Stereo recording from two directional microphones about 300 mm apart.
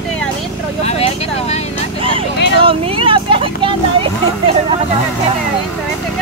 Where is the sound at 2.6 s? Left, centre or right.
Centre.